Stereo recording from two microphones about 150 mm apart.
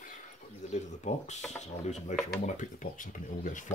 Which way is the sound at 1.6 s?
50° left (ahead or behind).